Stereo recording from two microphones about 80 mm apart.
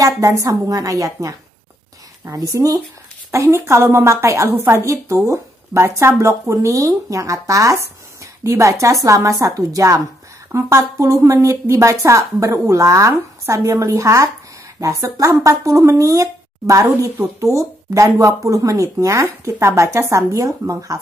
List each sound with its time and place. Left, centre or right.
0.0 s speech: right
2.3 s speech: right
3.3 s a woman's voice: right